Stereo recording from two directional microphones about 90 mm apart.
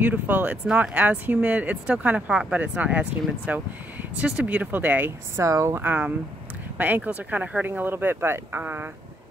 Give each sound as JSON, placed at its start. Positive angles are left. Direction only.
{"t": 0.0, "sound": "speech", "side_deg": -20}
{"t": 5.3, "sound": "speech", "side_deg": -35}
{"t": 5.8, "sound": "speech", "side_deg": -20}